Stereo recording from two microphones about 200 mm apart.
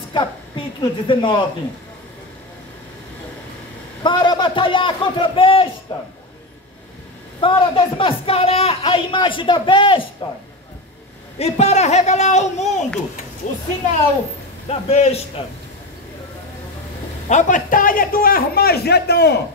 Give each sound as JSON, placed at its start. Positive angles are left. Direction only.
{"t": 0.1, "sound": "a woman's voice", "side_deg": 25}
{"t": 4.0, "sound": "a woman's voice", "side_deg": 25}
{"t": 7.3, "sound": "a woman's voice", "side_deg": 25}
{"t": 11.3, "sound": "speech", "side_deg": 30}
{"t": 14.7, "sound": "speech", "side_deg": 30}
{"t": 17.3, "sound": "a man's voice", "side_deg": 40}